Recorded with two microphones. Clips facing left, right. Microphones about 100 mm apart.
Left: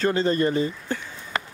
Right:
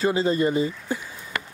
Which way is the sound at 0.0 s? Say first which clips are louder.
Even; 5° right (ahead or behind).